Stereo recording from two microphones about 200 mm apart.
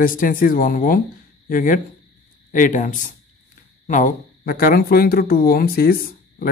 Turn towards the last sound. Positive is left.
turn(degrees=50)  # may be behind; listen again after turning